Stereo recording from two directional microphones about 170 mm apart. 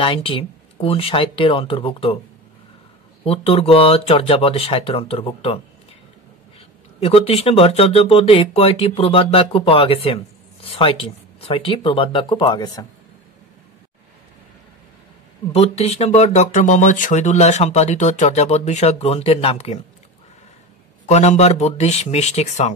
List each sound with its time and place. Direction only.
0.0 s speech: 30° left (ahead or behind)
3.3 s speech: 35° left (ahead or behind)
7.0 s speech: 35° left (ahead or behind)
15.5 s speech: 40° left (ahead or behind)
21.0 s speech: 40° left (ahead or behind)